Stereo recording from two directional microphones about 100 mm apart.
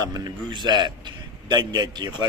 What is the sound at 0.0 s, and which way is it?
Speech, 40° right (ahead or behind).